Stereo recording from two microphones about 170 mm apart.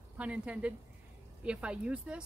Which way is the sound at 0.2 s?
5° right (ahead or behind).